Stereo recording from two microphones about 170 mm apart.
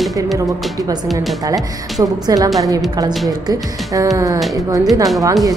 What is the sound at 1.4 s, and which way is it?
Speech, 20° right (ahead or behind).